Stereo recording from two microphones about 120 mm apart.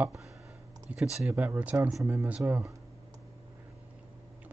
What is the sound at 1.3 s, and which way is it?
Speech, 15° right (ahead or behind).